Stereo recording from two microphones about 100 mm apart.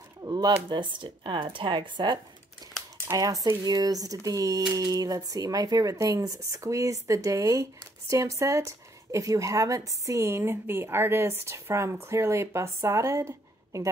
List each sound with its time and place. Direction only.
0.2 s a sound: 40° right (ahead or behind)
0.7 s speech: 50° right (ahead or behind)
3.1 s speech: 35° right (ahead or behind)